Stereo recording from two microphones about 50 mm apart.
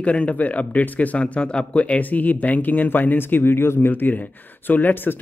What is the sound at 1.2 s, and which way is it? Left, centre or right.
Speech, left.